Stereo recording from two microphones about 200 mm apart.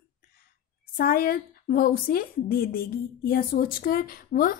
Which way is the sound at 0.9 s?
45° left (ahead or behind).